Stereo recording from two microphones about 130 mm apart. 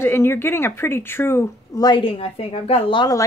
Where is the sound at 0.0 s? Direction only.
20° left (ahead or behind).